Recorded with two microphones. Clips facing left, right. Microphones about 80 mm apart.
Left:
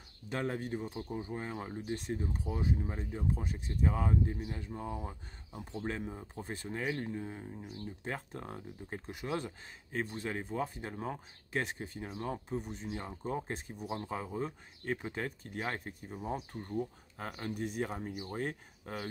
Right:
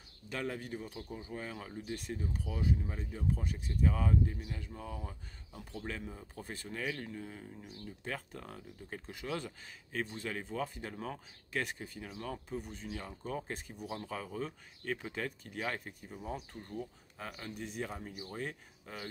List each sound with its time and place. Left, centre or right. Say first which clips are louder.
0.3 s speech: left 3 dB; left
2.0 s speech: left 4 dB; left
2.2 s speech: right 2 dB; left
3.5 s speech: even; left
17.5 s speech: left 6 dB; left
17.8 s speech: left 4 dB; left